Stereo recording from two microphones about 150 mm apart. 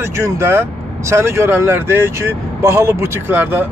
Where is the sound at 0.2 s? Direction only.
15° right (ahead or behind).